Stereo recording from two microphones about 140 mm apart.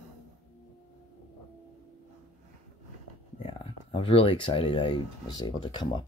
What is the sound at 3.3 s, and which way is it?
Speech, 40° left (ahead or behind).